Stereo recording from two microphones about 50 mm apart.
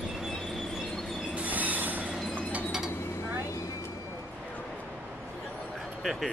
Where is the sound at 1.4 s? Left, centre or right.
Right.